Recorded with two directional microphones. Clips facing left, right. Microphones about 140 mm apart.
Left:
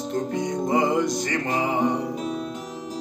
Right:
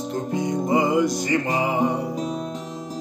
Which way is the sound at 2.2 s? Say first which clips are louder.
Right 1 dB; 40° right (ahead or behind).